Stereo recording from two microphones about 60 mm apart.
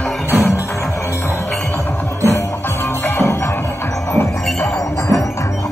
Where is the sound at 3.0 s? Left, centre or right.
Left.